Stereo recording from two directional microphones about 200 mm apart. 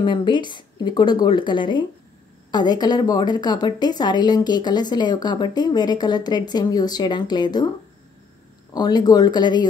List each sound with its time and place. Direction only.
0.0 s a woman's voice: 25° left (ahead or behind)
8.7 s a woman's voice: 20° left (ahead or behind)